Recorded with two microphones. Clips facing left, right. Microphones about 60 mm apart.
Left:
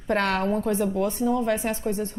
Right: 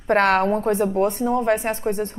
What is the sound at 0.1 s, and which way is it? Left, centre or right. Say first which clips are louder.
A woman's voice: right 6 dB; right.